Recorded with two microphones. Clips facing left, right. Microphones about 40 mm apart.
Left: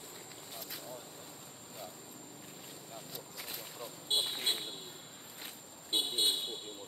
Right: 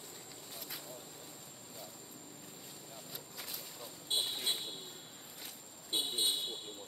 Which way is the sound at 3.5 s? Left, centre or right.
Left.